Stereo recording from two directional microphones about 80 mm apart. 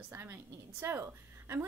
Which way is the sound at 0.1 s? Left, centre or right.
Right.